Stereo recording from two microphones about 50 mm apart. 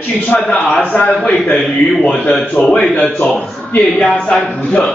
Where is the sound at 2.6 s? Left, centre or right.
Left.